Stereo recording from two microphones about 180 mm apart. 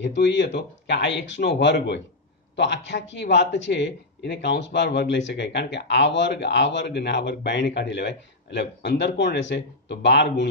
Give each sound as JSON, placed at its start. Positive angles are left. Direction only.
{"t": 0.0, "sound": "speech", "side_deg": 80}